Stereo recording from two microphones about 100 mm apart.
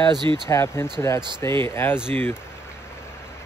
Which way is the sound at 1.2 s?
50° right (ahead or behind).